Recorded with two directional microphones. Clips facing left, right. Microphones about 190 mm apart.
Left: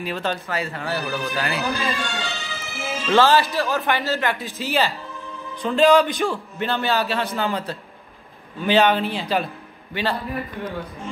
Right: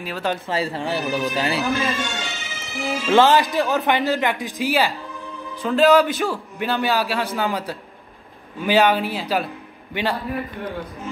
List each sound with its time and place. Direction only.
0.0 s speech: 5° right (ahead or behind)
0.5 s a man's voice: 30° right (ahead or behind); by 9.5 s 5° right (ahead or behind)